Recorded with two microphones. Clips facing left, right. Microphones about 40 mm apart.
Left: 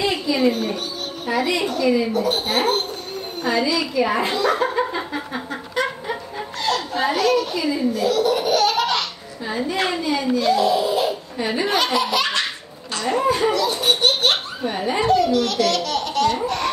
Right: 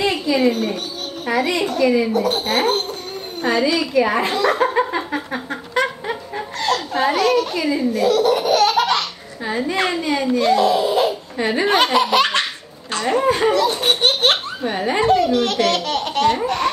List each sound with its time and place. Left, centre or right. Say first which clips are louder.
0.0 s a sound: right 2 dB; right
1.2 s a child's voice: right 2 dB; right
7.9 s laughter: right 4 dB; right
9.5 s speech: right 2 dB; right
14.8 s laughter: right 2 dB; right